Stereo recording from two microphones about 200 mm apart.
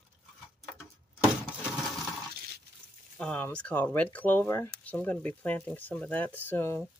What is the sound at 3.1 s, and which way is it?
Speech, 5° left (ahead or behind).